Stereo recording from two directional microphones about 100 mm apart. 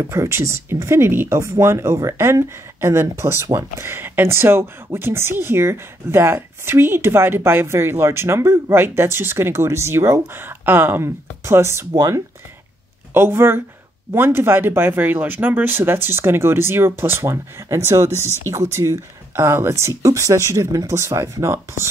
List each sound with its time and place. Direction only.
0.1 s speech: 25° right (ahead or behind)
13.1 s speech: 25° right (ahead or behind)